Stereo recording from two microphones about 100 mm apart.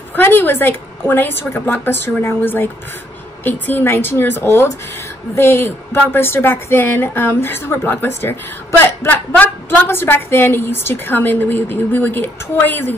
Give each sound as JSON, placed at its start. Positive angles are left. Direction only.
{"t": 0.1, "sound": "a woman's voice", "side_deg": 20}